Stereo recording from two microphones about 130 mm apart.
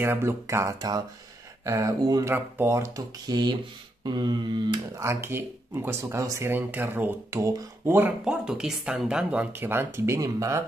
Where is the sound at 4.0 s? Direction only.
35° right (ahead or behind).